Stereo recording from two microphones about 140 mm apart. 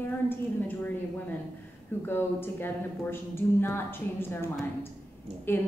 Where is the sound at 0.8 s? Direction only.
15° left (ahead or behind).